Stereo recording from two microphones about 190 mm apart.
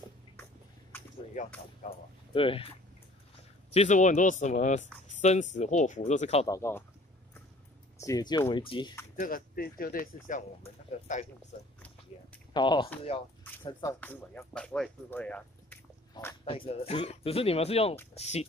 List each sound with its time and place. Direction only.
0.9 s a sound: 10° left (ahead or behind)
1.4 s speech: 40° left (ahead or behind)
3.7 s speech: 40° left (ahead or behind)
6.4 s speech: 15° left (ahead or behind)
8.0 s speech: 20° left (ahead or behind)
9.1 s speech: 50° left (ahead or behind)
12.5 s speech: 25° left (ahead or behind)
13.9 s speech: 10° left (ahead or behind)
16.4 s speech: 30° left (ahead or behind)